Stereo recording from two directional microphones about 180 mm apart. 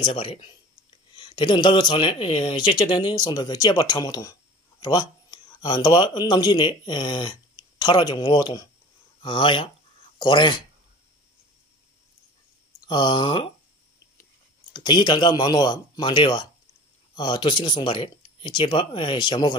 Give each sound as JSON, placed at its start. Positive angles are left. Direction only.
{"t": 0.0, "sound": "speech", "side_deg": 30}
{"t": 12.8, "sound": "speech", "side_deg": 25}
{"t": 14.7, "sound": "speech", "side_deg": 25}